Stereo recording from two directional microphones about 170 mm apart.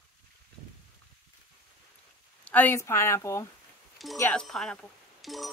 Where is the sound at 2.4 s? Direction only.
10° left (ahead or behind).